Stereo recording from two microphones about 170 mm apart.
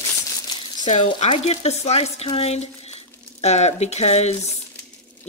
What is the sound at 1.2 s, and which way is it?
Speech, 35° left (ahead or behind).